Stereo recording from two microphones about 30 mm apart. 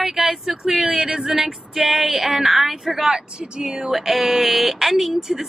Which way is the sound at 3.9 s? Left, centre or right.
Centre.